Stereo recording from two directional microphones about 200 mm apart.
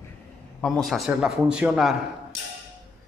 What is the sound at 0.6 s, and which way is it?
A man's voice, centre (ahead or behind).